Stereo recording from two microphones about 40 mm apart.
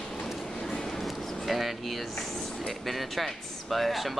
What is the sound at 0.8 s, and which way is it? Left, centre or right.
Music, centre.